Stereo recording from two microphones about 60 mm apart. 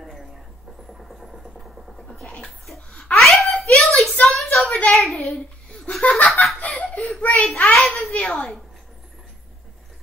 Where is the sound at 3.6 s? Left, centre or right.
Centre.